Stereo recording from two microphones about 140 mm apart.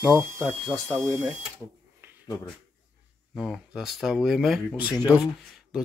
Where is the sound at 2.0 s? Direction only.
15° right (ahead or behind).